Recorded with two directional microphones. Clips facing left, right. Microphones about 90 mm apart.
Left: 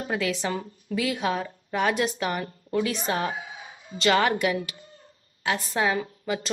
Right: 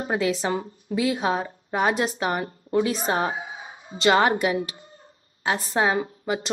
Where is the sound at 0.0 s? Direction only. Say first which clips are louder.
Right 3 dB; 25° right (ahead or behind).